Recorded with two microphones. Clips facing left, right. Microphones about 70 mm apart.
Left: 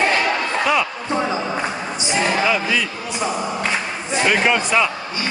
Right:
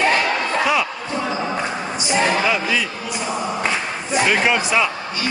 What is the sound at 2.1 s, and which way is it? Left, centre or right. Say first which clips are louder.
Music: right 1 dB; right.